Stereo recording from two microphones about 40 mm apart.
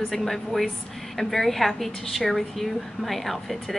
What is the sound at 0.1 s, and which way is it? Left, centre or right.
A woman's voice, centre.